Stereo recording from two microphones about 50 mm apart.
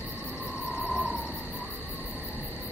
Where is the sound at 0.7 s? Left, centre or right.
Centre.